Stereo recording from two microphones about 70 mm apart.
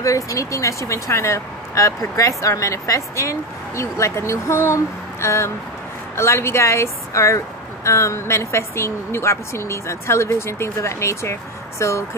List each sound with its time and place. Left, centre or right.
0.0 s speech: left